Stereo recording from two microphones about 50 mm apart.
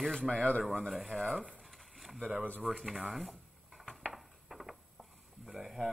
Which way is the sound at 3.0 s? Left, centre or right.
Centre.